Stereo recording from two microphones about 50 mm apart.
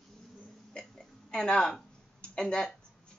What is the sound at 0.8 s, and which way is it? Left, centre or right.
Hiccup, centre.